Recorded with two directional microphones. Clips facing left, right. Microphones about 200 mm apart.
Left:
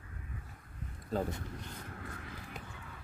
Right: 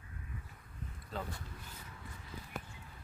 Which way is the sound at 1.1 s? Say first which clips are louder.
Left 8 dB; 45° left (ahead or behind).